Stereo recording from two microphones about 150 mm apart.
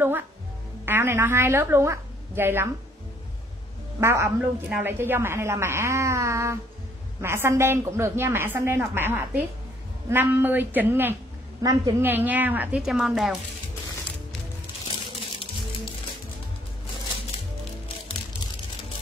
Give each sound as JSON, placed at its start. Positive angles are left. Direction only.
{"t": 0.8, "sound": "a woman's voice", "side_deg": -15}
{"t": 4.0, "sound": "a woman's voice", "side_deg": -20}
{"t": 11.6, "sound": "a woman's voice", "side_deg": -25}
{"t": 12.1, "sound": "a woman's voice", "side_deg": -10}